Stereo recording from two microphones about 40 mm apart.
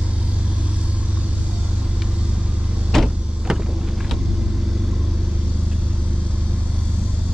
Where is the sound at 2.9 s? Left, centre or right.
Centre.